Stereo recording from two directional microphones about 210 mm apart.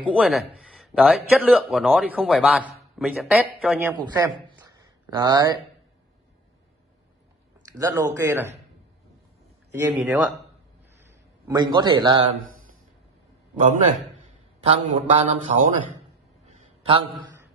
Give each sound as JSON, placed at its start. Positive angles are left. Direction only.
{"t": 0.0, "sound": "a man's voice", "side_deg": -5}
{"t": 3.8, "sound": "a man's voice", "side_deg": -20}
{"t": 4.6, "sound": "a sound", "side_deg": -20}
{"t": 7.7, "sound": "speech", "side_deg": -15}
{"t": 9.7, "sound": "speech", "side_deg": -10}
{"t": 11.4, "sound": "a man's voice", "side_deg": -20}
{"t": 14.6, "sound": "speech", "side_deg": -30}
{"t": 16.4, "sound": "a sound", "side_deg": -25}